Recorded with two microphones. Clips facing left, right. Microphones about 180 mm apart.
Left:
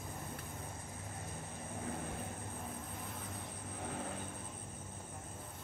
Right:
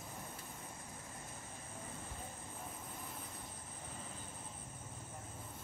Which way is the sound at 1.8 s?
70° left (ahead or behind).